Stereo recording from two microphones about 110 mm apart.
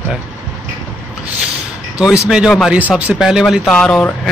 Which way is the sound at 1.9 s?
10° right (ahead or behind).